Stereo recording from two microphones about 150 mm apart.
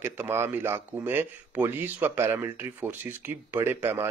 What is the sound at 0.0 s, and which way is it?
Speech, 15° right (ahead or behind).